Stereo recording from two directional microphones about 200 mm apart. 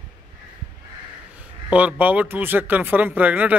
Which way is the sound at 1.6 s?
5° right (ahead or behind).